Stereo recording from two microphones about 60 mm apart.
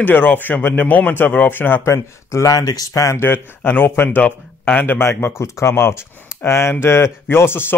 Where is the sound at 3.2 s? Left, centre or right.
Left.